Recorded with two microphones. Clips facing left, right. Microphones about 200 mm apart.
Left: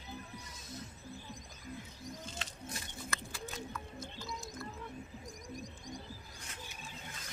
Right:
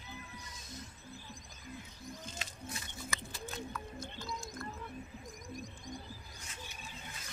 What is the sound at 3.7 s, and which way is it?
Music, 5° left (ahead or behind).